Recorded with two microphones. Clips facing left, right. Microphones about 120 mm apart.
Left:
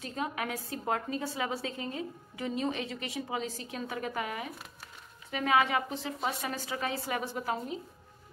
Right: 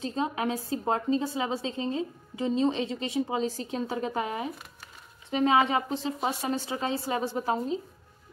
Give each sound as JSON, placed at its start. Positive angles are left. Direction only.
{"t": 0.0, "sound": "a woman's voice", "side_deg": -25}